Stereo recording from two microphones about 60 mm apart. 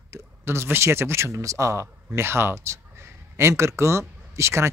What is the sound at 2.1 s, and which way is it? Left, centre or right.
Speech, right.